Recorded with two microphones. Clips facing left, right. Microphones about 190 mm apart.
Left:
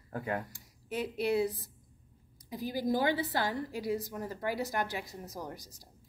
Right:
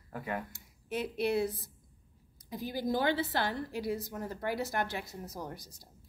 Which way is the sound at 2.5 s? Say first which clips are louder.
Left 1 dB; 10° left (ahead or behind).